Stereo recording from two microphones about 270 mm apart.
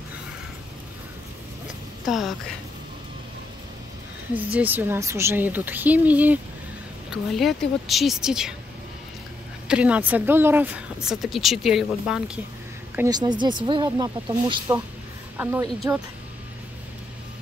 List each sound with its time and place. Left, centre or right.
2.0 s speech: centre
4.3 s speech: centre
9.7 s speech: centre
12.9 s speech: centre